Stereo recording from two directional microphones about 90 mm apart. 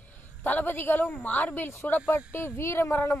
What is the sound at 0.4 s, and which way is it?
Speech, 20° left (ahead or behind).